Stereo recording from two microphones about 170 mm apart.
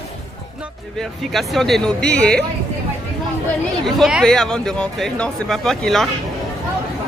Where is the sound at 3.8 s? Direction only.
Centre (ahead or behind).